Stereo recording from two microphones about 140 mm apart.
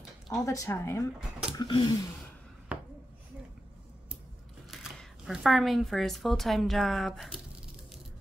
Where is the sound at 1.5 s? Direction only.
30° left (ahead or behind).